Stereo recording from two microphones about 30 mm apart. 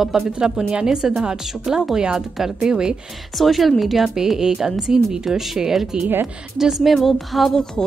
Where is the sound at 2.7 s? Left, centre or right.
Right.